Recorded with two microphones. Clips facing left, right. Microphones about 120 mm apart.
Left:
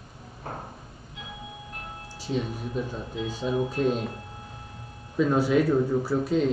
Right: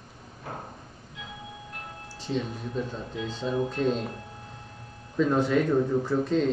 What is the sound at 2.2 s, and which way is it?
Speech, 5° left (ahead or behind).